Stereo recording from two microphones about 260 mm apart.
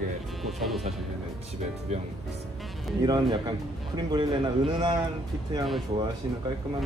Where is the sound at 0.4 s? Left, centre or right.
Centre.